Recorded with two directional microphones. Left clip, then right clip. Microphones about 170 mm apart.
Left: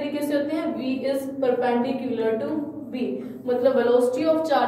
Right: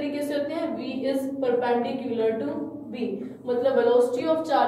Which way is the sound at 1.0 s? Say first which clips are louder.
Left 2 dB; 20° left (ahead or behind).